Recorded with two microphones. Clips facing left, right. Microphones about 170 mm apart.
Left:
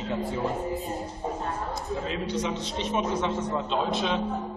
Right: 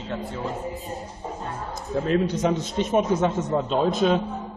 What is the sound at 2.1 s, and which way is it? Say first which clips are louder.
A man's voice: right 10 dB; 45° right (ahead or behind).